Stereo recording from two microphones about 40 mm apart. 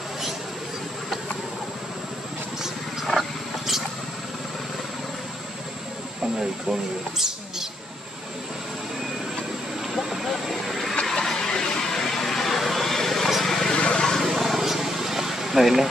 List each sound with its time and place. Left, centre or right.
2.6 s wild animals: centre
6.3 s speech: centre
9.9 s vehicle: centre
11.1 s vehicle: centre
13.7 s vehicle: left
14.2 s a sound: centre